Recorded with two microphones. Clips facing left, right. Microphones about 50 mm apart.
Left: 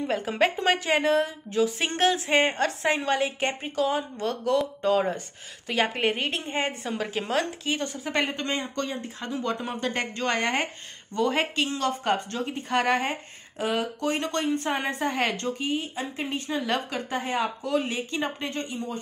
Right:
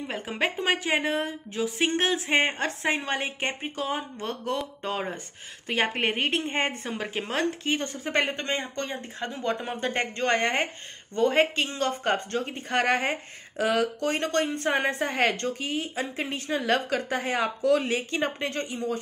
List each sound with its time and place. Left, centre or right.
0.1 s a woman's voice: centre
5.7 s a woman's voice: right
13.6 s a woman's voice: right
14.1 s a woman's voice: right
15.6 s a woman's voice: right